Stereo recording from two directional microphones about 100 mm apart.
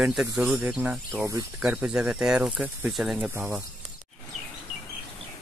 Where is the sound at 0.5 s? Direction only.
15° right (ahead or behind).